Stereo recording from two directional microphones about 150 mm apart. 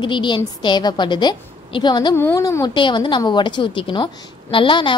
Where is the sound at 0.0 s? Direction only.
30° left (ahead or behind).